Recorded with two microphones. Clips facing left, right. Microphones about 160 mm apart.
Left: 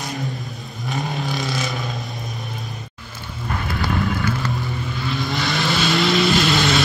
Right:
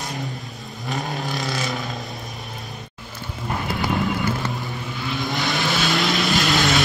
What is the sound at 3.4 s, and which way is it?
Fire, 15° right (ahead or behind).